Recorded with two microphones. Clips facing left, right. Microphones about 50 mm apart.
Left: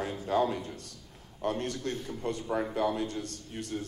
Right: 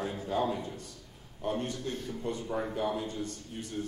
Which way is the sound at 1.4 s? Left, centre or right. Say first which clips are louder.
Left 1 dB; left.